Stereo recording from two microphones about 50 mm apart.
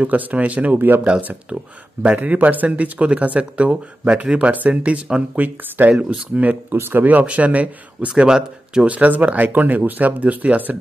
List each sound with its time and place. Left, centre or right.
0.0 s speech: right
0.7 s speech: right
1.5 s speech: right
5.3 s speech: right
6.7 s speech: right
8.2 s speech: centre
8.8 s speech: right